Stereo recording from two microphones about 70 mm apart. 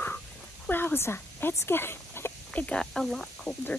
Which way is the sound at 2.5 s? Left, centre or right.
Centre.